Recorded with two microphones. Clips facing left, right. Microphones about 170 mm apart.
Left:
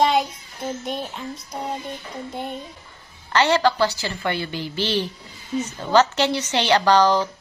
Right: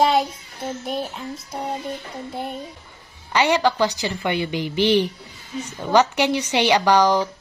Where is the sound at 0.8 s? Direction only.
Centre (ahead or behind).